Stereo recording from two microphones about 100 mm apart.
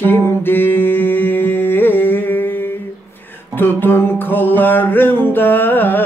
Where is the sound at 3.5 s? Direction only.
20° left (ahead or behind).